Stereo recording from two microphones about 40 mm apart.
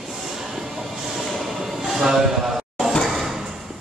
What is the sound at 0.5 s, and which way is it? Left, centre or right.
Train, centre.